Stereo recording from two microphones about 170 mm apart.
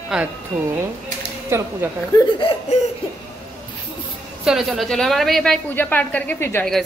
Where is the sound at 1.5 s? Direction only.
15° right (ahead or behind).